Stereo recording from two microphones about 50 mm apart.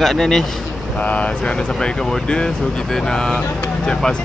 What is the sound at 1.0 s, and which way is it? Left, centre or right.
Speech, left.